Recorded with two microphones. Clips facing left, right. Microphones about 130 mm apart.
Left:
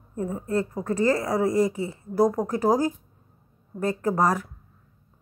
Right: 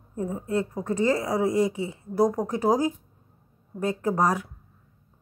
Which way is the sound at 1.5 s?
45° left (ahead or behind).